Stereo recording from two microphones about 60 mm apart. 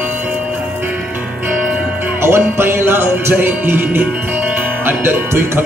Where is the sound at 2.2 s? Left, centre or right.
Right.